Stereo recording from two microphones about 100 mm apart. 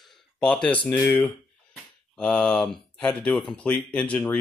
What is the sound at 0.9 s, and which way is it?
Speech, 25° left (ahead or behind).